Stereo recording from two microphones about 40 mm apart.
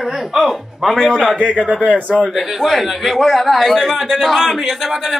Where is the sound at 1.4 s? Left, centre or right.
Right.